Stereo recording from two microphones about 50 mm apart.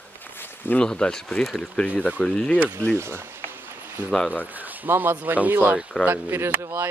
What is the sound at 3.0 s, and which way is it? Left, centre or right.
Speech, right.